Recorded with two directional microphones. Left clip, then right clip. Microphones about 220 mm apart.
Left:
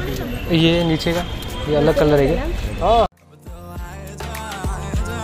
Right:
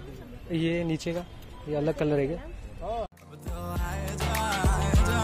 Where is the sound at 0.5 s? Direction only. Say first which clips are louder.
Left 12 dB; 30° right (ahead or behind).